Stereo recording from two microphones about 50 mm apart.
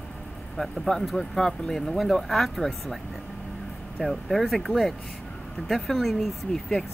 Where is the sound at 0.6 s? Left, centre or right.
Centre.